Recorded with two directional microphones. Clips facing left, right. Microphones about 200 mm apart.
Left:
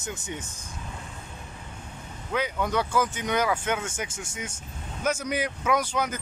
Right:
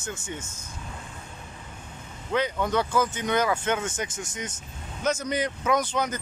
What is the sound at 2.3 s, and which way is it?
Speech, 10° left (ahead or behind).